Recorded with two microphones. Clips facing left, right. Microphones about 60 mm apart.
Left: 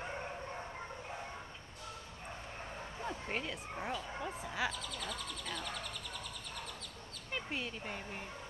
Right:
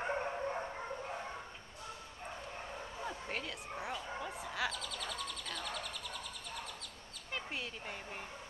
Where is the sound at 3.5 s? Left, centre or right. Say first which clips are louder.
Left 1 dB; centre.